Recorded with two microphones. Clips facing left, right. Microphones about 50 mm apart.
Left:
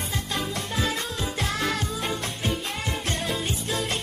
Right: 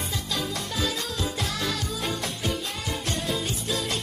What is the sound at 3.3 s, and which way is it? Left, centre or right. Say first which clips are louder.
Music: even; left.